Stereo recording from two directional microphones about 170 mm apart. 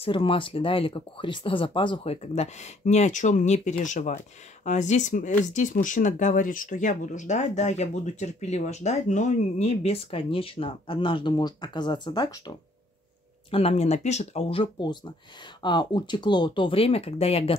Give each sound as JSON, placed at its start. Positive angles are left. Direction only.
{"t": 0.0, "sound": "speech", "side_deg": 30}
{"t": 13.5, "sound": "speech", "side_deg": 35}